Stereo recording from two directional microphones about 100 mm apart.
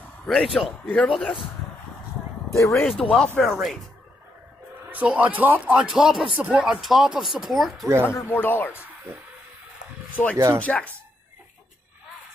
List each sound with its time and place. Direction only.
0.3 s speech: centre (ahead or behind)
2.5 s speech: 30° left (ahead or behind)
3.0 s speech: 10° left (ahead or behind)
4.9 s speech: 15° right (ahead or behind)
8.1 s speech: 25° left (ahead or behind)
10.3 s speech: 30° right (ahead or behind)
10.6 s speech: 15° left (ahead or behind)